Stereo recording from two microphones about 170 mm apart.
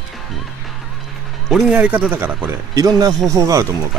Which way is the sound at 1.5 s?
5° right (ahead or behind).